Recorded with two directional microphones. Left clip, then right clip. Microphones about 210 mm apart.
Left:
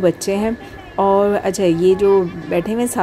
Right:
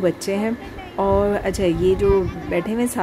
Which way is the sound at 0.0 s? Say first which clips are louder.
Left 4 dB; 15° left (ahead or behind).